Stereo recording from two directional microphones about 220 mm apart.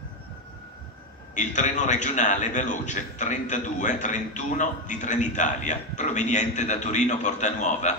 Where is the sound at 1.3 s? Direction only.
35° left (ahead or behind).